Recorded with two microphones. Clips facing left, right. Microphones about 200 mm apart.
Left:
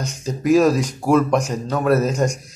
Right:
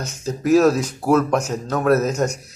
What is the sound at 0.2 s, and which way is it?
Speech, 5° right (ahead or behind).